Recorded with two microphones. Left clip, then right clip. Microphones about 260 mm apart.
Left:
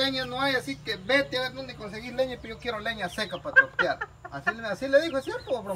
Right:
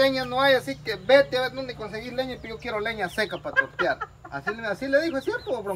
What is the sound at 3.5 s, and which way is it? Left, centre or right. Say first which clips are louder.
Speech: left 6 dB; centre.